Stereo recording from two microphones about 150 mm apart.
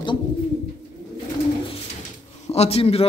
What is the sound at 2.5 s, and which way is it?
Speech, 45° left (ahead or behind).